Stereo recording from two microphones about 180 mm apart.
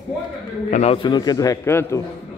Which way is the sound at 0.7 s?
40° left (ahead or behind).